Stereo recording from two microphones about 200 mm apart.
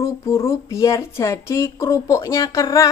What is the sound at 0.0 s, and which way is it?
A woman's voice, 15° left (ahead or behind).